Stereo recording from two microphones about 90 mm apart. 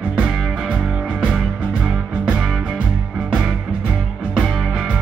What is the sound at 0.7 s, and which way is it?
Music, 15° right (ahead or behind).